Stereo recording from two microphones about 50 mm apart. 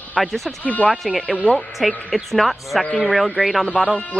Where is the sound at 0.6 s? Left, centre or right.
Left.